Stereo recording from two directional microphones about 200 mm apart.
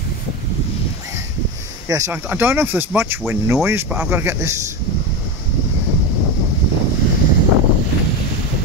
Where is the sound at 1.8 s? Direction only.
15° right (ahead or behind).